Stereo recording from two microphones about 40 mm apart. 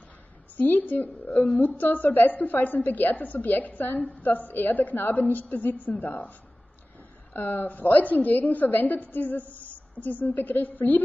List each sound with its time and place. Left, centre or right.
0.6 s a woman's voice: left
7.3 s a woman's voice: left